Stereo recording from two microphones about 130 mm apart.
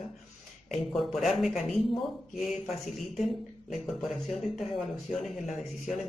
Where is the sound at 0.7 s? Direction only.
Centre (ahead or behind).